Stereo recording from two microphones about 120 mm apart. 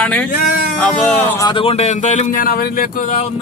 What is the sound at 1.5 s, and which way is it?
Speech, 50° left (ahead or behind).